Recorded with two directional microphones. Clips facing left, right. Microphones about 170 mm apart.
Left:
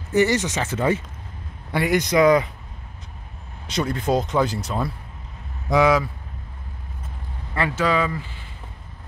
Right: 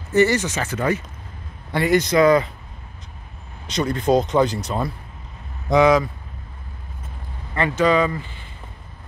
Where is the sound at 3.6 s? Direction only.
5° left (ahead or behind).